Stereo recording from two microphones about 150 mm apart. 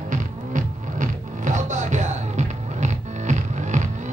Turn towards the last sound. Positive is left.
turn(degrees=-55)  # may be behind; listen again after turning